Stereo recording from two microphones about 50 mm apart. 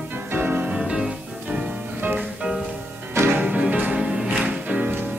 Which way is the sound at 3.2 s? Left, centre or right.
Right.